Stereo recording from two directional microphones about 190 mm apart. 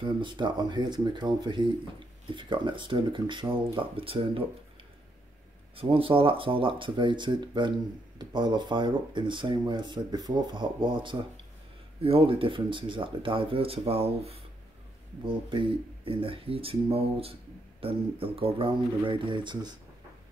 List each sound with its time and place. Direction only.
0.0 s speech: 25° right (ahead or behind)
5.8 s speech: 30° right (ahead or behind)